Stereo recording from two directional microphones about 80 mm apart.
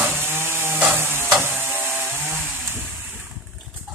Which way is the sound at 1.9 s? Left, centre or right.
Right.